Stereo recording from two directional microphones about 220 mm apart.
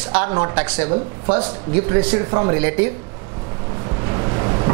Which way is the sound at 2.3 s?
25° right (ahead or behind).